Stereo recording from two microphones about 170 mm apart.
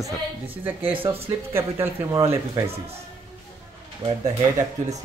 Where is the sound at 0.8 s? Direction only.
30° right (ahead or behind).